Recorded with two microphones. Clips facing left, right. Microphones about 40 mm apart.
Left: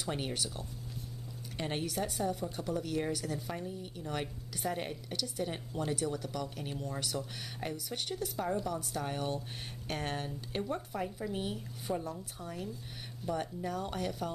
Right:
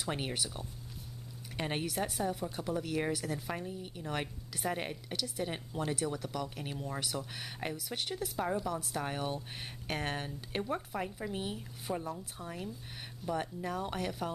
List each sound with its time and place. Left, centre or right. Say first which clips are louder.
0.1 s a woman's voice: even; centre